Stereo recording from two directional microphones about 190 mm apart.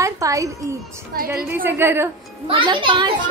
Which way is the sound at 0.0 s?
15° right (ahead or behind).